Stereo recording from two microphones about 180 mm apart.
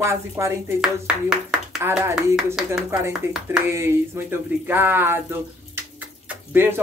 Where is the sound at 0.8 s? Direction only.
5° right (ahead or behind).